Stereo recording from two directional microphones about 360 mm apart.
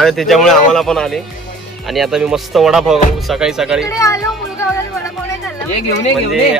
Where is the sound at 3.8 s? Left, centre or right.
Centre.